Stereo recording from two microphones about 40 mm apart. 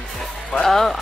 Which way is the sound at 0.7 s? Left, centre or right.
Centre.